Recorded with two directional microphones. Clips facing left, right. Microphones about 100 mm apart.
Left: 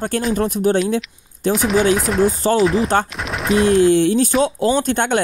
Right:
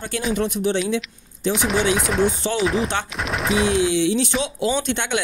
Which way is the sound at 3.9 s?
45° left (ahead or behind).